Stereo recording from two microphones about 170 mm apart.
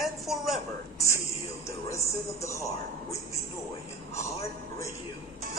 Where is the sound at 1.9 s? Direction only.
15° left (ahead or behind).